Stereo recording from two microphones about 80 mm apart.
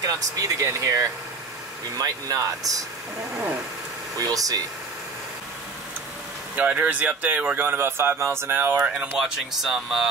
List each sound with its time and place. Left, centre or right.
0.0 s speech: right
4.3 s speech: right
6.5 s speech: centre
9.2 s speech: centre